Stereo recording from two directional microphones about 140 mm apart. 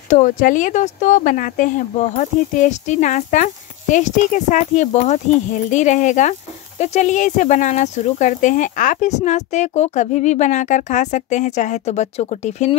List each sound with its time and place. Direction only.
0.1 s speech: 70° left (ahead or behind)
2.1 s speech: 60° left (ahead or behind)